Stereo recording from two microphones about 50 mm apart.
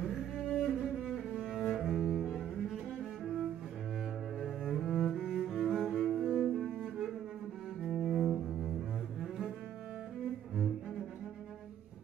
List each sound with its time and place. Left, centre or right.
0.0 s cello: centre
0.5 s cello: centre
1.3 s cello: centre
1.6 s cello: centre
4.4 s cello: centre